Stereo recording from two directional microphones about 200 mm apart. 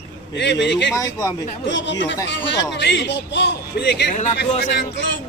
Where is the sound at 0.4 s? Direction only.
60° left (ahead or behind).